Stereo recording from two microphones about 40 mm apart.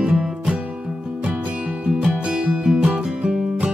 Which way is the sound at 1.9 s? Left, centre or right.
Centre.